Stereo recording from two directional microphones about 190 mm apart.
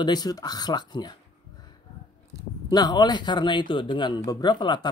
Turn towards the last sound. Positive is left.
turn(degrees=25)  # may be behind; listen again after turning